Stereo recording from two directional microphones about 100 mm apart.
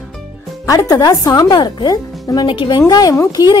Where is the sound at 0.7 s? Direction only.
35° left (ahead or behind).